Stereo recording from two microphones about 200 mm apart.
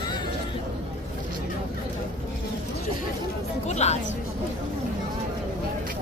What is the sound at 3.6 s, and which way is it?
Speech, 35° left (ahead or behind).